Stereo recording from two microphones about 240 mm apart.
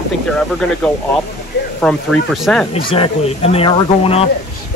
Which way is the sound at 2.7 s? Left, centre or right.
Left.